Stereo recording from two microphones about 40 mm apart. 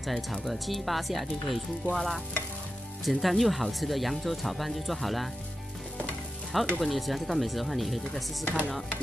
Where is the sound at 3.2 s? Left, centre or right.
Centre.